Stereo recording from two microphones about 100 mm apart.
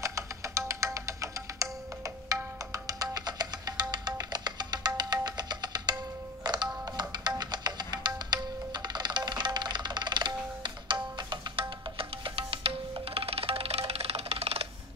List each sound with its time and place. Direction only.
0.0 s music: 30° right (ahead or behind); by 14.7 s 80° right